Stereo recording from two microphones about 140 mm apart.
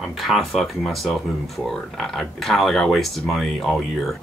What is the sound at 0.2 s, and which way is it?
Speech, centre (ahead or behind).